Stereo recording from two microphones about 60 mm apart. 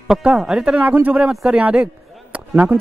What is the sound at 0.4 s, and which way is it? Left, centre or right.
A man's voice, centre.